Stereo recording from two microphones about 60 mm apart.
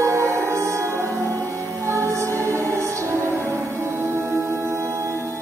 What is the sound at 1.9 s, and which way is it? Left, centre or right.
Music, right.